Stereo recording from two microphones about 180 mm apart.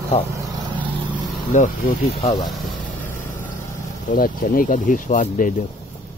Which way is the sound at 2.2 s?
30° left (ahead or behind).